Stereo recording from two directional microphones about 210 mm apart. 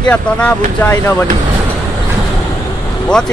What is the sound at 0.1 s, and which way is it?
Speech, 5° left (ahead or behind).